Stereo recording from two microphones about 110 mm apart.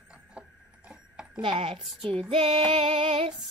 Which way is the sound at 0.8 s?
10° right (ahead or behind).